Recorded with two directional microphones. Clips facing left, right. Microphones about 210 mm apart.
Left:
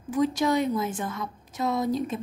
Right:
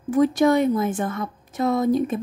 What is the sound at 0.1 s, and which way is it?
A woman's voice, 55° right (ahead or behind).